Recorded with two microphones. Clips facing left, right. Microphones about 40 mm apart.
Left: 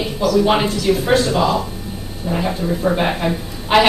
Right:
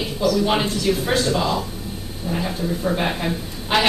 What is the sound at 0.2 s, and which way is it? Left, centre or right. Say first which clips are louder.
Speech: left 2 dB; left.